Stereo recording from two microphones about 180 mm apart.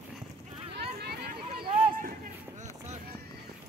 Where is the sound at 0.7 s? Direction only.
65° right (ahead or behind).